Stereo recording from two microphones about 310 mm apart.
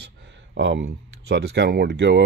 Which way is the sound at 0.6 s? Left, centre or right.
Right.